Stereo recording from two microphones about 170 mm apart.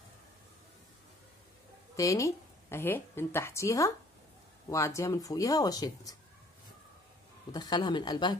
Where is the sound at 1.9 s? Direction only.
20° left (ahead or behind).